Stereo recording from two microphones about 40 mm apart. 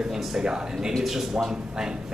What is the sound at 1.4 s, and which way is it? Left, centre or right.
Speech, centre.